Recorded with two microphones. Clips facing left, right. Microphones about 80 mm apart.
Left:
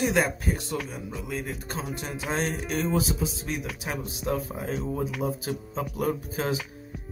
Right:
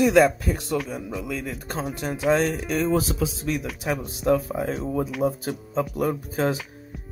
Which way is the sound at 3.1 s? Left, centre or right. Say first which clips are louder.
Right 5 dB; right.